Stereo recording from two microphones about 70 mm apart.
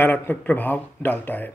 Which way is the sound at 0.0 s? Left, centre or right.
Left.